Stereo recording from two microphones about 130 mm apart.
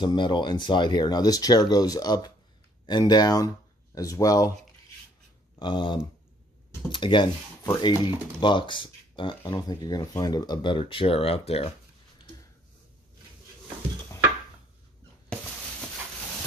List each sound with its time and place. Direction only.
0.0 s speech: 35° left (ahead or behind)
5.6 s speech: 40° left (ahead or behind)